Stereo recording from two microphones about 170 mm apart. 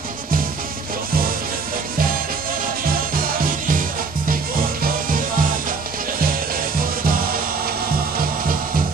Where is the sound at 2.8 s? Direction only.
60° right (ahead or behind).